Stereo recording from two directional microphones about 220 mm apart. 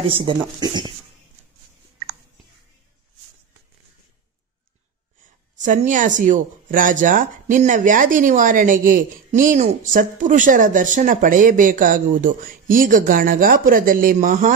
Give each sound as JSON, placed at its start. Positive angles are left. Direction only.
{"t": 0.1, "sound": "speech", "side_deg": -20}
{"t": 5.6, "sound": "speech", "side_deg": -35}